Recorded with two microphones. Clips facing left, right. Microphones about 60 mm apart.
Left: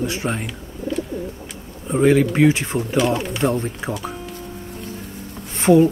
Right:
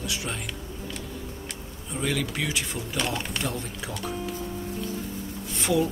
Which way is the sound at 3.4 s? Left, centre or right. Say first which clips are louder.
Left 11 dB; left.